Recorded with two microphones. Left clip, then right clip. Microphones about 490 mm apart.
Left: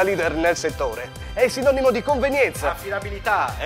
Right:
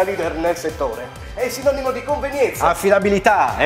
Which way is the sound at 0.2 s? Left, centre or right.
Left.